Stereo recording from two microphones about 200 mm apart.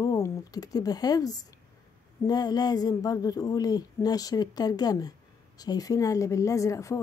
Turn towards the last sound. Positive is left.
turn(degrees=15)  # may be behind; listen again after turning